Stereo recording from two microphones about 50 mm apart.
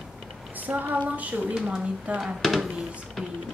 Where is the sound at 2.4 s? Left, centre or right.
Centre.